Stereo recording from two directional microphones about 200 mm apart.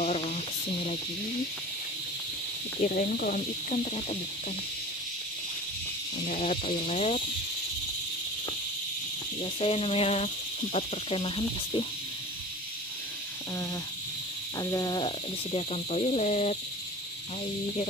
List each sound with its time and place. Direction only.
0.0 s snake: 30° left (ahead or behind)
2.8 s speech: 45° left (ahead or behind)
3.8 s speech: 30° left (ahead or behind)
6.2 s speech: 40° left (ahead or behind)
9.4 s speech: 30° left (ahead or behind)
14.6 s speech: 20° left (ahead or behind)